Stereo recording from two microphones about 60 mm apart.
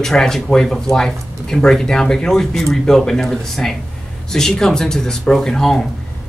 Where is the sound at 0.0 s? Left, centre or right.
Centre.